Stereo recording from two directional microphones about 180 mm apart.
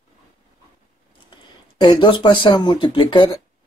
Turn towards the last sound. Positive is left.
turn(degrees=25)  # may be behind; listen again after turning